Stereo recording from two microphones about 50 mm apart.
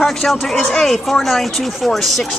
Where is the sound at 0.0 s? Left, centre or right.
Centre.